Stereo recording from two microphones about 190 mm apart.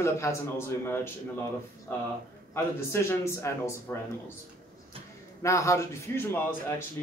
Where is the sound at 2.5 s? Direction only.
15° left (ahead or behind).